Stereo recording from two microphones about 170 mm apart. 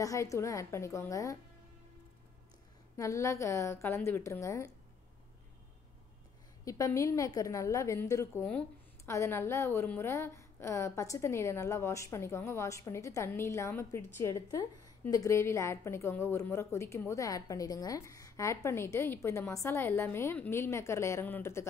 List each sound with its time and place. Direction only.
0.0 s a woman's voice: 20° left (ahead or behind)
3.0 s a woman's voice: 20° left (ahead or behind)
6.6 s a woman's voice: 20° left (ahead or behind)